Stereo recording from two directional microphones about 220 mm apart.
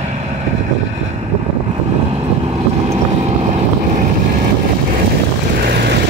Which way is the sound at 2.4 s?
25° right (ahead or behind).